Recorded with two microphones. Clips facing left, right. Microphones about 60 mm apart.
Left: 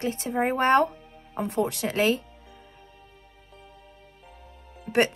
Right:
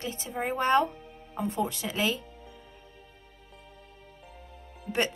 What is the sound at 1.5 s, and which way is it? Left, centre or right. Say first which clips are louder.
Speech: left 5 dB; left.